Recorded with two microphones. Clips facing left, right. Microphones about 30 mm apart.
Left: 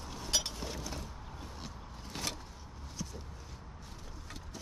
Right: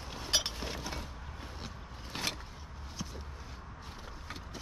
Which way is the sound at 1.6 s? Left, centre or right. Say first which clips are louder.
Right 1 dB; right.